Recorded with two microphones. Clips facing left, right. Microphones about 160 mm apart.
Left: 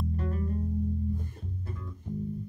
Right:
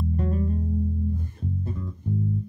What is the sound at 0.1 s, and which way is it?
Music, 30° right (ahead or behind).